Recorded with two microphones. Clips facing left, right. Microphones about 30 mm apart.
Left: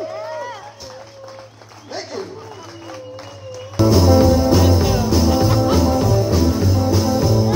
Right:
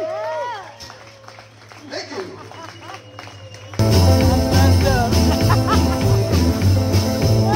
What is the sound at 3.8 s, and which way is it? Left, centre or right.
Music, right.